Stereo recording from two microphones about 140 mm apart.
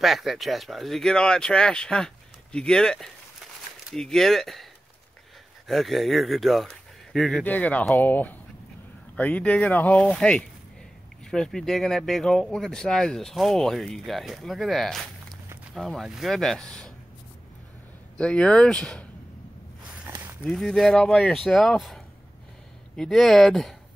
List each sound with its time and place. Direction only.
0.0 s speech: centre (ahead or behind)
5.7 s speech: centre (ahead or behind)
18.1 s speech: 5° left (ahead or behind)
20.1 s a sound: 15° right (ahead or behind)
20.4 s speech: centre (ahead or behind)